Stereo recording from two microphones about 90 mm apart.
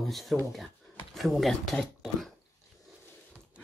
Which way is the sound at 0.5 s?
Centre (ahead or behind).